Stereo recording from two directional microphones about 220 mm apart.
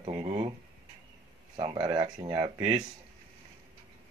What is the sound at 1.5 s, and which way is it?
Speech, 20° right (ahead or behind).